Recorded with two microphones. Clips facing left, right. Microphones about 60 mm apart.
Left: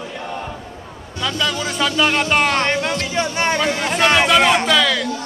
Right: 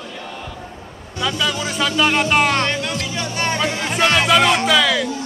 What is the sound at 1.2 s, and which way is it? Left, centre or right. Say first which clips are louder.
Speech: even; centre.